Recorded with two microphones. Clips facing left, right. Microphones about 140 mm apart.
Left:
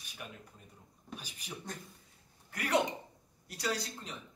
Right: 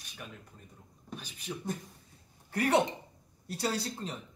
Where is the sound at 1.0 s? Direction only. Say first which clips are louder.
Right 5 dB; 10° left (ahead or behind).